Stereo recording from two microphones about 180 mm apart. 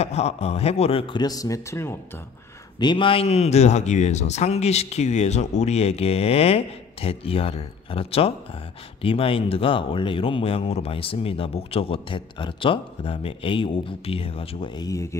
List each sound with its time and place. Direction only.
0.0 s speech: 35° left (ahead or behind); by 2.0 s 15° left (ahead or behind)
2.8 s speech: 25° left (ahead or behind)